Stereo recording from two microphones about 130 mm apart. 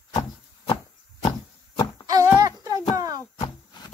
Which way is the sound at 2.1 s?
25° right (ahead or behind).